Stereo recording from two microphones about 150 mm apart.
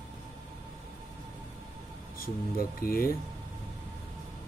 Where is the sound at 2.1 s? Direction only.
75° left (ahead or behind).